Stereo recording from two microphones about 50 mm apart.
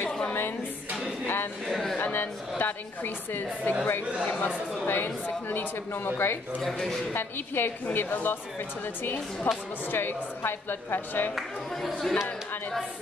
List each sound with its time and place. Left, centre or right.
0.3 s speech: left
1.7 s speech: centre
2.0 s a woman's voice: left
4.8 s speech: left
6.6 s speech: centre
7.2 s a woman's voice: left
11.7 s speech: centre